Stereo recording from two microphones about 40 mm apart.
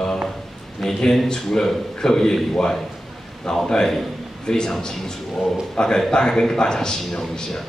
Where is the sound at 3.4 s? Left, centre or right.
Centre.